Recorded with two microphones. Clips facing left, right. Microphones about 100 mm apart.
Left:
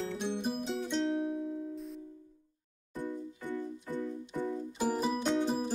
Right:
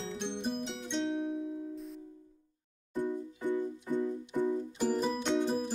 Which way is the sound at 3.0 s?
15° right (ahead or behind).